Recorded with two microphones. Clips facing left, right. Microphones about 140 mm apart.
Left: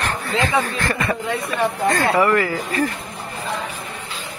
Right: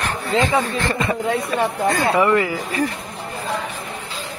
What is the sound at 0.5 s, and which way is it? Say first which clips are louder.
A man's voice: right 1 dB; 25° right (ahead or behind).